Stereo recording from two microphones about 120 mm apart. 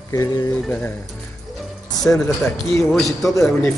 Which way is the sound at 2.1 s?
15° left (ahead or behind).